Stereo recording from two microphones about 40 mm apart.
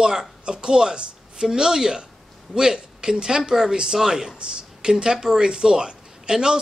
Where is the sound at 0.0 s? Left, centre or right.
Centre.